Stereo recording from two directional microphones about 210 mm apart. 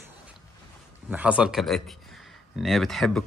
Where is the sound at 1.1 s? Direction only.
5° right (ahead or behind).